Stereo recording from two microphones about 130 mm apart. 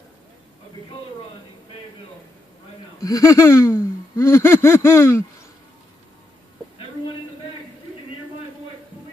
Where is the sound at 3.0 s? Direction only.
25° left (ahead or behind).